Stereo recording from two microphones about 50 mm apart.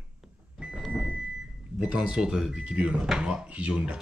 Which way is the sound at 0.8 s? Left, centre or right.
Centre.